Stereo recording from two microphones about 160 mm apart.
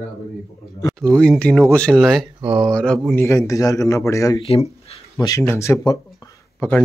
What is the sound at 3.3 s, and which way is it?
Speech, 20° left (ahead or behind).